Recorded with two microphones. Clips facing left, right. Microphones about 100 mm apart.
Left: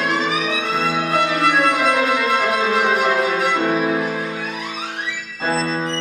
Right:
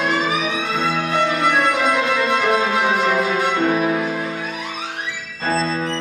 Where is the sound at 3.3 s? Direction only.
Centre (ahead or behind).